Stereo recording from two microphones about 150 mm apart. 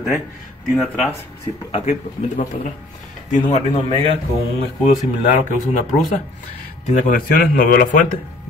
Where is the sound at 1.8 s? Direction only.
60° left (ahead or behind).